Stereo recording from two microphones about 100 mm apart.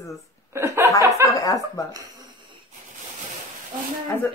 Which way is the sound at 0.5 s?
30° right (ahead or behind).